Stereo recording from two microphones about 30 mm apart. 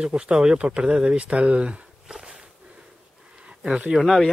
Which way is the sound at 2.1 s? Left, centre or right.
Right.